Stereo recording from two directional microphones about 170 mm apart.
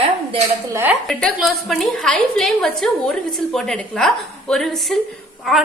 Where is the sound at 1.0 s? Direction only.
Centre (ahead or behind).